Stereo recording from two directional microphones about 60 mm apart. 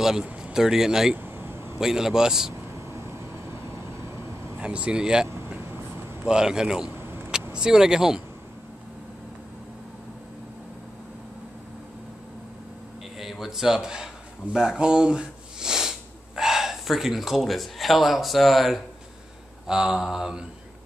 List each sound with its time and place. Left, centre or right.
0.0 s speech: centre
1.1 s vehicle: right
1.8 s speech: centre
4.6 s speech: centre
7.0 s vehicle: right
7.5 s speech: centre
13.2 s a sound: centre
19.7 s speech: centre